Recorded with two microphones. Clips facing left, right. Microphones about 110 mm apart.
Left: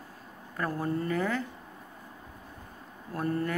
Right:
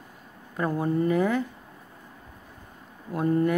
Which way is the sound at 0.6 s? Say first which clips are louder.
Right 6 dB; 20° right (ahead or behind).